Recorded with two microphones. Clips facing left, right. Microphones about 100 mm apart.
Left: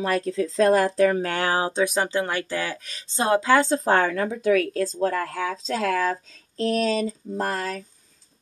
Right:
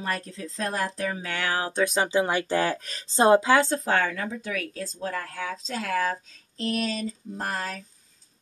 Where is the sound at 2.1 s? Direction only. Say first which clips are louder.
Right 2 dB; 20° right (ahead or behind).